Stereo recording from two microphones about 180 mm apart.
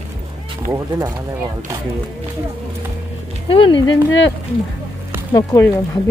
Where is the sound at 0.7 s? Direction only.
15° right (ahead or behind).